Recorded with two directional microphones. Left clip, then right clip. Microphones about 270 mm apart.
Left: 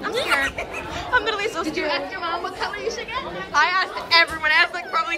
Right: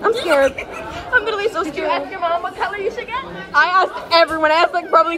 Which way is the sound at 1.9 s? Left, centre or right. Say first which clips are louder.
Right 6 dB; centre.